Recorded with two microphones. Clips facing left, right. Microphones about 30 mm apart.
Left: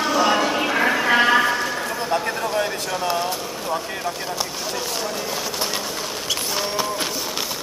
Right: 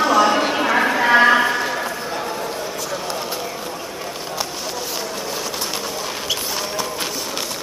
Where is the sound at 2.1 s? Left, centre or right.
Centre.